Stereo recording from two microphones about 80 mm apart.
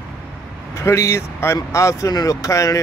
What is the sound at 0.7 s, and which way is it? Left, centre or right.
A man's voice, left.